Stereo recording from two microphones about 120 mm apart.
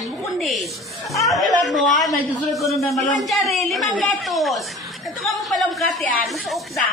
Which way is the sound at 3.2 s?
Centre (ahead or behind).